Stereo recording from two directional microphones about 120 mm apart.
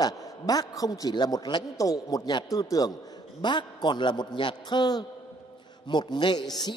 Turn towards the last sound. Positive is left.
turn(degrees=35)  # may be behind; listen again after turning